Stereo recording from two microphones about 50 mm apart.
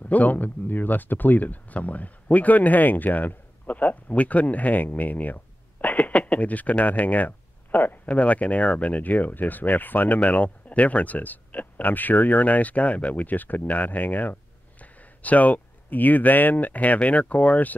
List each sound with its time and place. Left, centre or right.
0.1 s speech: left